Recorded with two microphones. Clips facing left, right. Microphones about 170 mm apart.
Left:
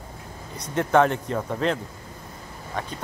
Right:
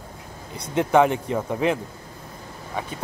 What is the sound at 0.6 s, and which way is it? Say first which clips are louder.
Speech: right 2 dB; 10° right (ahead or behind).